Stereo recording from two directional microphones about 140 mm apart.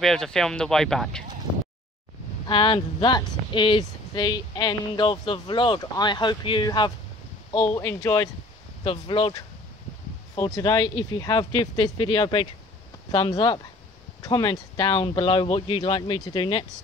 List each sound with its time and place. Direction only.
0.0 s speech: 5° left (ahead or behind)
2.4 s speech: 35° left (ahead or behind)
7.7 s speech: 20° left (ahead or behind)
8.8 s speech: 35° left (ahead or behind)
10.3 s speech: 25° left (ahead or behind)